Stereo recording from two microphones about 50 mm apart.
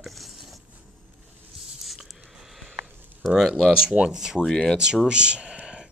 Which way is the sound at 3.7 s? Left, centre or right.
Centre.